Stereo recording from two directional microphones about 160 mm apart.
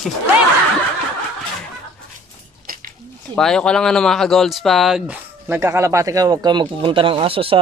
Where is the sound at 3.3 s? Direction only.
5° left (ahead or behind).